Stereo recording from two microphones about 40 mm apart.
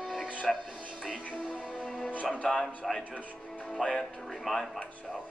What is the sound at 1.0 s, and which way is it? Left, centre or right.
Music, centre.